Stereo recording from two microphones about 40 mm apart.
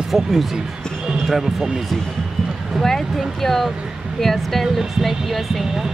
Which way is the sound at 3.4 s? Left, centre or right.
Centre.